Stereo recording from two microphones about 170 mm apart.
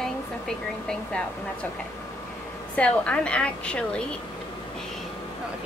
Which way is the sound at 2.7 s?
5° left (ahead or behind).